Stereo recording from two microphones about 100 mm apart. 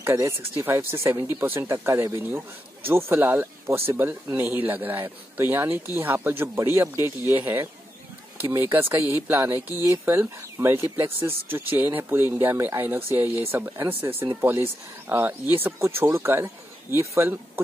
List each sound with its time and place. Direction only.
0.0 s speech: 30° right (ahead or behind)
8.7 s speech: 25° right (ahead or behind)